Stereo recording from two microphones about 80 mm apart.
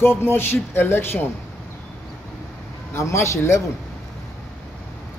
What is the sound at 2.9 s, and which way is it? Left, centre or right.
Speech, left.